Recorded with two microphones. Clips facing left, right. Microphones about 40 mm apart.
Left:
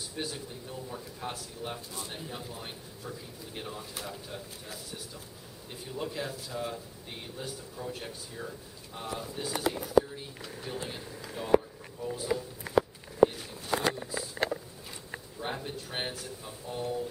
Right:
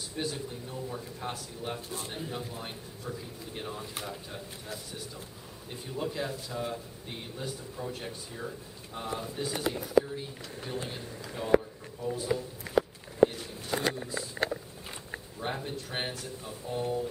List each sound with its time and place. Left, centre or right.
0.1 s a man's voice: centre
1.8 s speech: right
2.1 s a man's voice: centre
13.3 s a sound: centre
15.4 s a man's voice: centre